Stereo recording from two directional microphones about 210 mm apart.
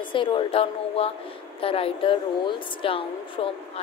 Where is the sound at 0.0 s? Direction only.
25° left (ahead or behind).